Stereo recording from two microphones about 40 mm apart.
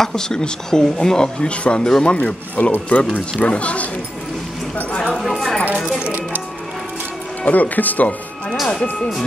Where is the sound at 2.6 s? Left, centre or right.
Left.